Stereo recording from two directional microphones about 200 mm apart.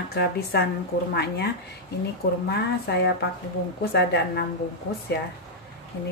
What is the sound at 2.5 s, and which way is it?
A woman's voice, 55° left (ahead or behind).